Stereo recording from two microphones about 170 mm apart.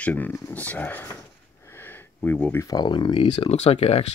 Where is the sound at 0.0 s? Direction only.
10° left (ahead or behind).